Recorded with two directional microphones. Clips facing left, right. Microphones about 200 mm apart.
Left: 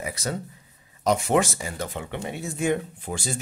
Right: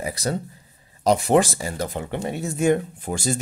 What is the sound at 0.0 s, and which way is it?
Speech, 35° right (ahead or behind).